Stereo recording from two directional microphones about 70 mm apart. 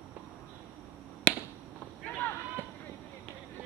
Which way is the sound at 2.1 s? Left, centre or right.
Left.